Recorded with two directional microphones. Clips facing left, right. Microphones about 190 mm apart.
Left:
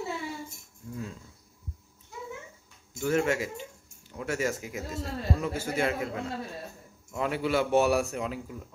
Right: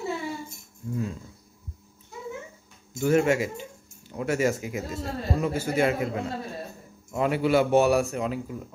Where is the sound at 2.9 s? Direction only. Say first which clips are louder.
Right 5 dB; 15° right (ahead or behind).